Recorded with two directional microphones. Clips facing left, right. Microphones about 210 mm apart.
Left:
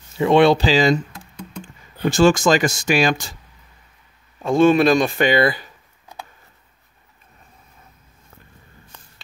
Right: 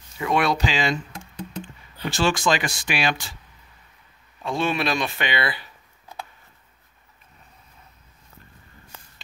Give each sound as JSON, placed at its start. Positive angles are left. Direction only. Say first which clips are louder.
{"t": 0.2, "sound": "speech", "louder": "left 9 dB", "side_deg": 30}
{"t": 4.4, "sound": "speech", "louder": "left 11 dB", "side_deg": 45}